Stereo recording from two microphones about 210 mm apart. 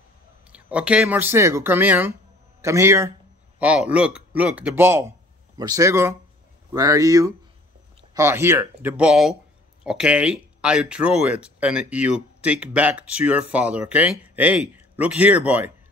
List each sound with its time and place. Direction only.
0.5 s a man's voice: 5° right (ahead or behind)